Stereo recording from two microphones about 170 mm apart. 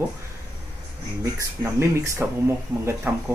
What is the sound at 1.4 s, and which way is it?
Speech, 15° right (ahead or behind).